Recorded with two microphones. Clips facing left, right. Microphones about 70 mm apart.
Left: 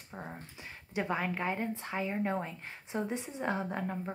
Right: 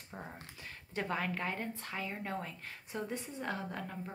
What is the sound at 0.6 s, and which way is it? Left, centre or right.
Speech, centre.